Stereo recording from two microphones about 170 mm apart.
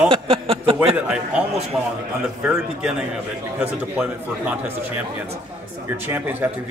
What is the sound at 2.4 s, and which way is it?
A man's voice, 5° right (ahead or behind).